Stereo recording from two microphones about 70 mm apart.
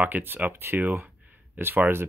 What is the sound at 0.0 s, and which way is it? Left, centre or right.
Speech, right.